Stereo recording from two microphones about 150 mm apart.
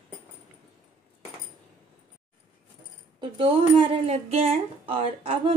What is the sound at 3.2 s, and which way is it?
A woman's voice, 35° right (ahead or behind).